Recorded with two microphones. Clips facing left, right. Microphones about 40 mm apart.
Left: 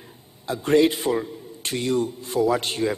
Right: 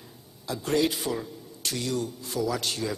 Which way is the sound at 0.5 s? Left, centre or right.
Left.